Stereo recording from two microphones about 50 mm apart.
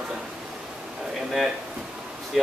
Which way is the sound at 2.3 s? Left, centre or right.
Centre.